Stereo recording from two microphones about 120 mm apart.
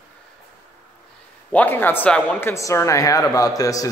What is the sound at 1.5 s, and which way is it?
Speech, 15° left (ahead or behind).